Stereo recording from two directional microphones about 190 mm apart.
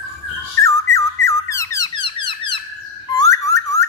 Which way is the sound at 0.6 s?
15° left (ahead or behind).